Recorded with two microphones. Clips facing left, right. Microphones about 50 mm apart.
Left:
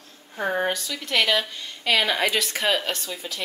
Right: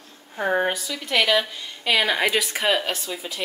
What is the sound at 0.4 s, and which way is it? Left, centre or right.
Speech, centre.